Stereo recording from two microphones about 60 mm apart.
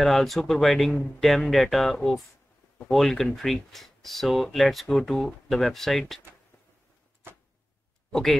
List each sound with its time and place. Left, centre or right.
0.0 s speech: centre
8.1 s speech: centre